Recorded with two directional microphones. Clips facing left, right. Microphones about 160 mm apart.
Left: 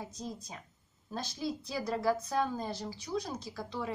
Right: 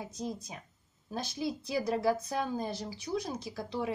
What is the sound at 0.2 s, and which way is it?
A woman's voice, 10° right (ahead or behind).